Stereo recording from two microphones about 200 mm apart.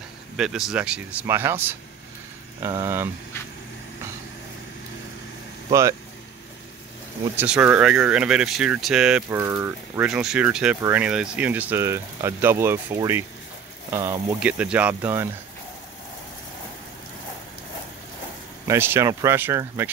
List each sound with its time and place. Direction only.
0.4 s speech: 5° right (ahead or behind)
5.7 s speech: 15° right (ahead or behind)
7.3 s speech: 5° right (ahead or behind)
18.7 s speech: 10° right (ahead or behind)